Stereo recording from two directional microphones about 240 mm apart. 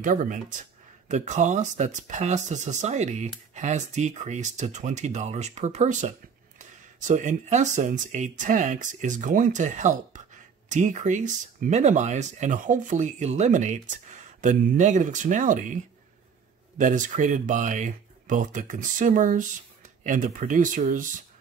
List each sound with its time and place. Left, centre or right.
0.0 s speech: right